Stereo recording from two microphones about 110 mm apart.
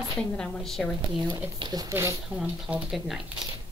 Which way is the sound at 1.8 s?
30° right (ahead or behind).